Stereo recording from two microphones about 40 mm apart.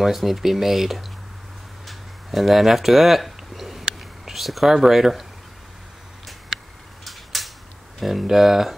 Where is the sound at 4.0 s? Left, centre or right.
Centre.